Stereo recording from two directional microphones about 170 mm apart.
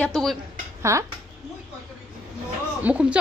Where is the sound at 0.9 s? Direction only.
15° right (ahead or behind).